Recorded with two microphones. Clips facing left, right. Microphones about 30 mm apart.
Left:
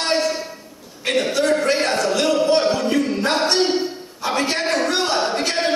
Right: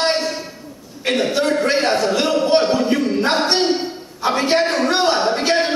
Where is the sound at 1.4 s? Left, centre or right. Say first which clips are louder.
Left 1 dB; right.